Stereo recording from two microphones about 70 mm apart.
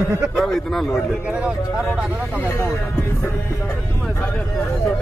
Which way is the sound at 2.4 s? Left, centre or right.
Left.